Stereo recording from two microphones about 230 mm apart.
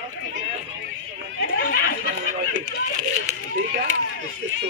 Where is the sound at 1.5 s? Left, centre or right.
Left.